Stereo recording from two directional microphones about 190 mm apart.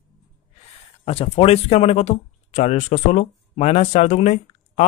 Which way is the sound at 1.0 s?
30° left (ahead or behind).